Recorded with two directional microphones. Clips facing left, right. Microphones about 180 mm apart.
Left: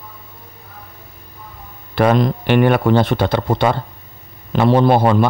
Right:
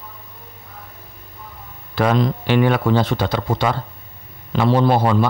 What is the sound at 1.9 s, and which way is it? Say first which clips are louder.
A man's voice: left 3 dB; 55° left (ahead or behind).